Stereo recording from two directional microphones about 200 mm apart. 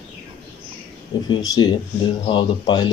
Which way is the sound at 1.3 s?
20° left (ahead or behind).